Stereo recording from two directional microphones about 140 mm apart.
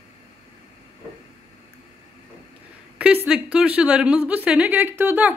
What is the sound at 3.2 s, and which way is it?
Speech, 5° right (ahead or behind).